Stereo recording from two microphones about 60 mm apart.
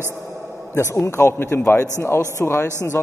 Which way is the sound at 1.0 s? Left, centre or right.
Left.